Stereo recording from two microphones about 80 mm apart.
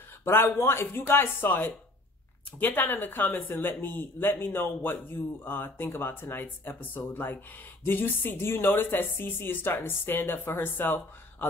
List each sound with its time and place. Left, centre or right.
0.2 s speech: left